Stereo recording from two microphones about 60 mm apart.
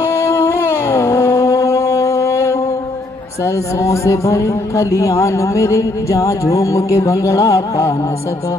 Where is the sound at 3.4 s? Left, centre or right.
Left.